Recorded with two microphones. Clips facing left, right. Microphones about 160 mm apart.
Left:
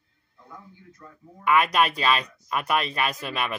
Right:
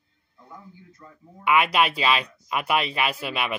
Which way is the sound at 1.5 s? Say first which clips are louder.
Even; 10° right (ahead or behind).